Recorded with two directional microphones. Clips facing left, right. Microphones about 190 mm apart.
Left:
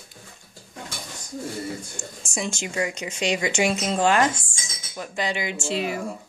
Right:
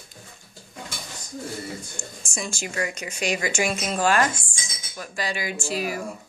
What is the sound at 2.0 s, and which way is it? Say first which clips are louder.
Speech: left 3 dB; 20° left (ahead or behind).